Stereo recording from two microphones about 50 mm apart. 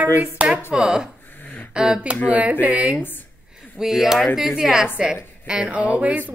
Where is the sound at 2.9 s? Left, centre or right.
Left.